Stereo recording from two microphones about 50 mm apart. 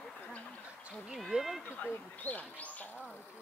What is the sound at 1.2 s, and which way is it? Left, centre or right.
Speech, centre.